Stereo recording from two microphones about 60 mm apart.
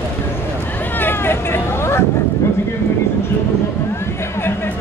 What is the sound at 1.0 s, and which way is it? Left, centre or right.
Vehicle, left.